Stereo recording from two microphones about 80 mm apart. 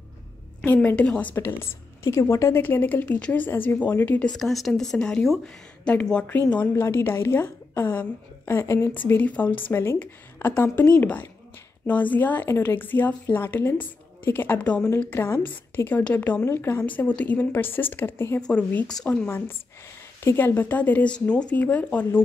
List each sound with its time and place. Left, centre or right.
0.8 s a woman's voice: centre
1.3 s a woman's voice: left
2.6 s a woman's voice: left
4.3 s a woman's voice: centre
6.7 s a woman's voice: left
18.5 s a woman's voice: centre